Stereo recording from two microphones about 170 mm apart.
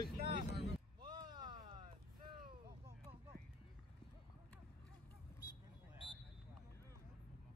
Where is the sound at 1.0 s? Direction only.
25° right (ahead or behind).